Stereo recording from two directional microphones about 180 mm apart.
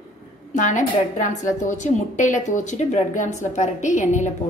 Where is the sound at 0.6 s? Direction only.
45° left (ahead or behind).